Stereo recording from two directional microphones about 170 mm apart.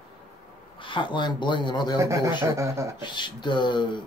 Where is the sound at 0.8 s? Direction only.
30° left (ahead or behind).